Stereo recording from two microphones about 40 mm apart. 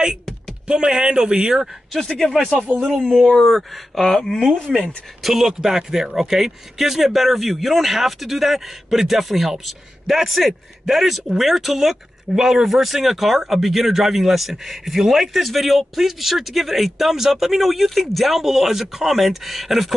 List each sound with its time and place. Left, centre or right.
0.7 s speech: centre
2.0 s speech: centre
3.4 s speech: centre
4.7 s speech: centre